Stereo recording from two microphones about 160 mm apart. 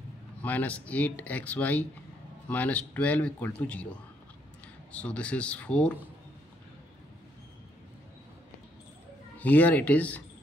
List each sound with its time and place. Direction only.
0.4 s speech: 10° left (ahead or behind)
4.9 s speech: 10° left (ahead or behind)
9.4 s speech: 10° left (ahead or behind)